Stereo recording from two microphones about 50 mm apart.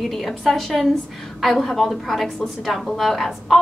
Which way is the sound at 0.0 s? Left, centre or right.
Centre.